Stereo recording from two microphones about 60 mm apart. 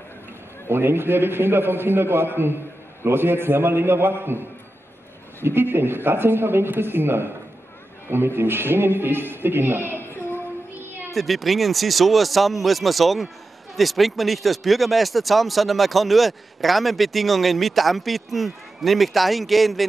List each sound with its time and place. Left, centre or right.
0.7 s a man's voice: right
5.4 s a man's voice: right
8.4 s speech: right
11.1 s speech: centre